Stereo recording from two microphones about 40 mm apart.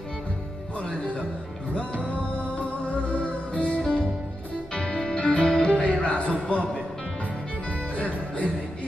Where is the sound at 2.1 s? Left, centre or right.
Left.